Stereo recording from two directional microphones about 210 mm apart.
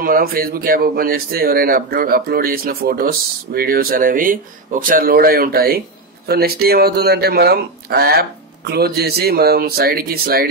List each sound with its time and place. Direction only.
0.0 s speech: 45° right (ahead or behind)